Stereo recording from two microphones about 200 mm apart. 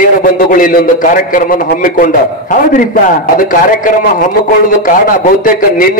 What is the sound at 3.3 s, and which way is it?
A man's voice, 40° left (ahead or behind).